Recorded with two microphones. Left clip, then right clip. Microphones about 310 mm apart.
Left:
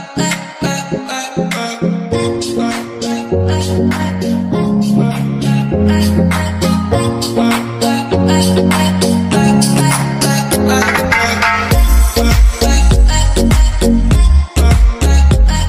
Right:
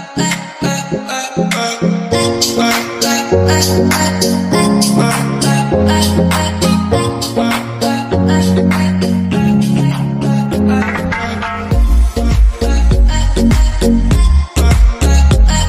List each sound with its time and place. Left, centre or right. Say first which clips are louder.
0.2 s music: even; centre; by 4.7 s right
4.7 s music: right 3 dB; right; by 10.2 s left
10.2 s music: left 1 dB; left
12.2 s music: left 4 dB; left
13.4 s music: right 2 dB; centre